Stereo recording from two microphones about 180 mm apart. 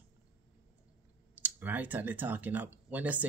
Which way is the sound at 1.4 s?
10° right (ahead or behind).